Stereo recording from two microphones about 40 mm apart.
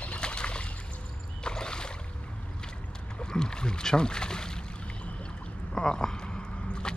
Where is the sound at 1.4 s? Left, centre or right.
Left.